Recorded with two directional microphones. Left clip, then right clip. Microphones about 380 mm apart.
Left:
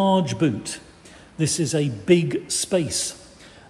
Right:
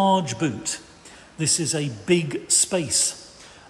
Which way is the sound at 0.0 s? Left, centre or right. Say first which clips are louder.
Even; centre.